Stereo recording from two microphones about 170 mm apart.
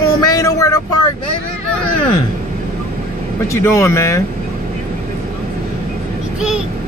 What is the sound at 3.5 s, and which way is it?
Speech, 15° left (ahead or behind).